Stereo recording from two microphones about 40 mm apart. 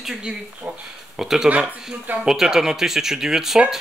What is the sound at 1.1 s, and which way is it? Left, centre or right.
Speech, centre.